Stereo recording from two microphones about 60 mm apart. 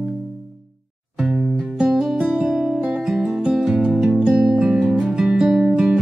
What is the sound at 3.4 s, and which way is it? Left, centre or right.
Music, centre.